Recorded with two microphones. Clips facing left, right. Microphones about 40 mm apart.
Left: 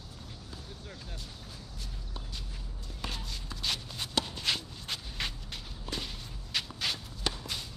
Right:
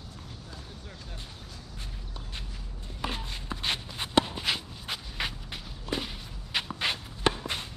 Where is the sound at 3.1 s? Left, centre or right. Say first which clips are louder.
Right 5 dB; right.